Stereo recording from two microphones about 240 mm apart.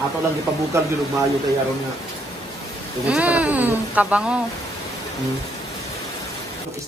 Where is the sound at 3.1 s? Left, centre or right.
Centre.